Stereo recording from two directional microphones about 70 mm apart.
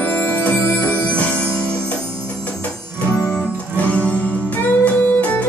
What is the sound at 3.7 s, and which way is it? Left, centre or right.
Music, centre.